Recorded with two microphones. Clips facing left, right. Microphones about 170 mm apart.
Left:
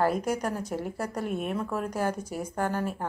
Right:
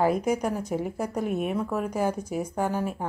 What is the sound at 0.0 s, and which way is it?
A woman's voice, 10° right (ahead or behind).